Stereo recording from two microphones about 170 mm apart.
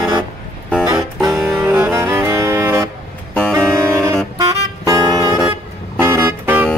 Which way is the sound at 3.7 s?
5° left (ahead or behind).